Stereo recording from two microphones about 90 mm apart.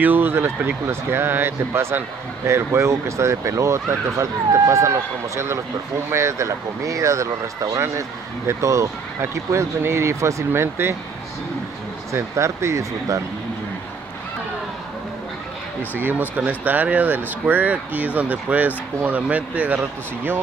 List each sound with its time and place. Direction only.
0.0 s speech: 20° right (ahead or behind)
12.1 s speech: 35° right (ahead or behind)
16.0 s speech: 20° right (ahead or behind)